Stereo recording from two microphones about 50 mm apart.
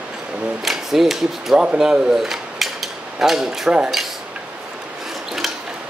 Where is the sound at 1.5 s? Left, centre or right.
Right.